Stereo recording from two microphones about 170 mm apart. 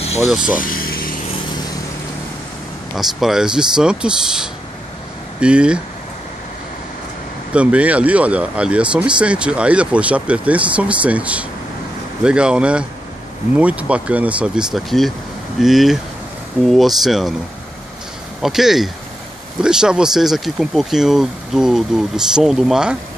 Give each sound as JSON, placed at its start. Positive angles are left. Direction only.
{"t": 0.3, "sound": "speech", "side_deg": -5}
{"t": 0.6, "sound": "vehicle", "side_deg": 55}
{"t": 3.0, "sound": "speech", "side_deg": 0}
{"t": 7.5, "sound": "speech", "side_deg": -10}
{"t": 18.4, "sound": "speech", "side_deg": 0}